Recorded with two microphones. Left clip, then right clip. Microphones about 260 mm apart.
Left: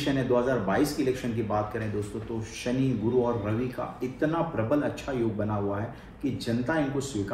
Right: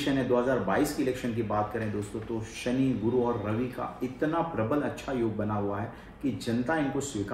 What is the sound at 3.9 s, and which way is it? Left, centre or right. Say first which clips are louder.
A man's voice: left 1 dB; centre.